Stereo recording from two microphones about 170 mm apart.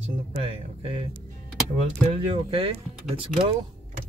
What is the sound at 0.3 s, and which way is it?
Speech, 35° right (ahead or behind).